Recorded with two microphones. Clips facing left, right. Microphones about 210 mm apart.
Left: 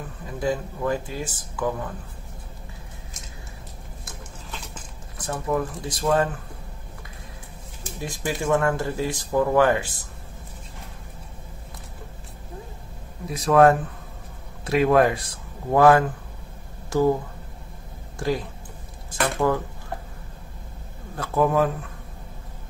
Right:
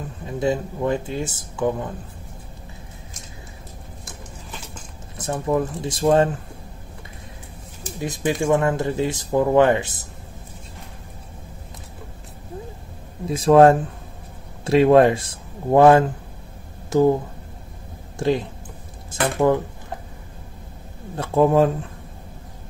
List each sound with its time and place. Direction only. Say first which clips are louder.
0.4 s speech: right 4 dB; 25° right (ahead or behind)
5.1 s speech: right 4 dB; 25° right (ahead or behind)
8.0 s speech: right 5 dB; 20° right (ahead or behind)
13.3 s speech: right 4 dB; 30° right (ahead or behind)
18.2 s speech: right 5 dB; 20° right (ahead or behind)
21.2 s speech: right 4 dB; 25° right (ahead or behind)